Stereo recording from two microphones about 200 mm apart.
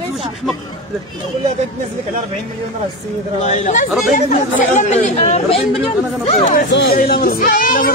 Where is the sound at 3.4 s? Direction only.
35° left (ahead or behind).